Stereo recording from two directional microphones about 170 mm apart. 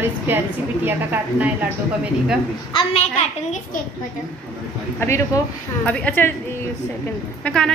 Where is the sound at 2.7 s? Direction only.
30° left (ahead or behind).